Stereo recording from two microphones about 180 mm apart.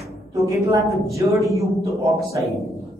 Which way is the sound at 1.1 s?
15° right (ahead or behind).